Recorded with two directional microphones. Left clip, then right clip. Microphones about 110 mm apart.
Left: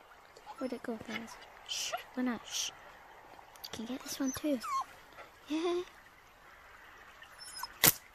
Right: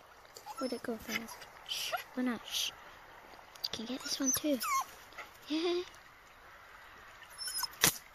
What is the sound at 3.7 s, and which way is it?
Speech, 25° left (ahead or behind).